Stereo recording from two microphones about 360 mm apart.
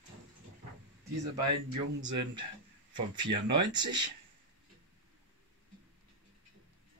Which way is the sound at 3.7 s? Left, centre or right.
Centre.